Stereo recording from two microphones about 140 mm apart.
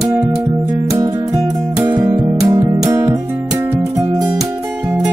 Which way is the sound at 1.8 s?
25° right (ahead or behind).